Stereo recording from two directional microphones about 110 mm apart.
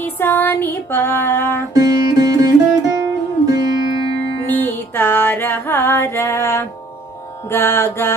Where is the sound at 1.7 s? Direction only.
35° right (ahead or behind).